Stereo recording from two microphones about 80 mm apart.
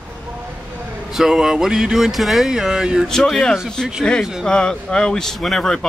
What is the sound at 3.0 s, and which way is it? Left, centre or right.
Speech, centre.